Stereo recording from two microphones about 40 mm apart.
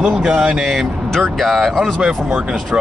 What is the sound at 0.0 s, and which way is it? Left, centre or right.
Speech, right.